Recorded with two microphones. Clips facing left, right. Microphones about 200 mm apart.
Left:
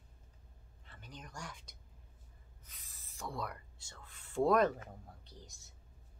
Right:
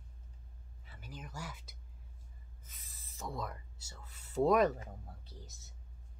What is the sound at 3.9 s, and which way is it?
Speech, 5° right (ahead or behind).